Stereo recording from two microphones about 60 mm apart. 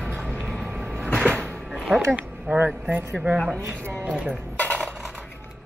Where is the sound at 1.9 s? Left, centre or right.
Right.